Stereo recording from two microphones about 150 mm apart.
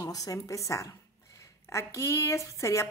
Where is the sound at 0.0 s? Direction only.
25° left (ahead or behind).